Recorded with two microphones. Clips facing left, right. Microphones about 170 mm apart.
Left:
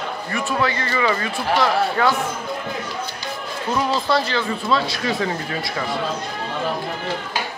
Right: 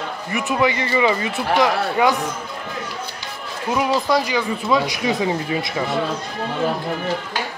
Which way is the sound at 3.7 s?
10° right (ahead or behind).